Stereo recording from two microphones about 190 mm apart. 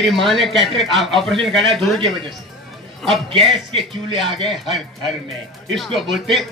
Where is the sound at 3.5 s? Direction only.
25° right (ahead or behind).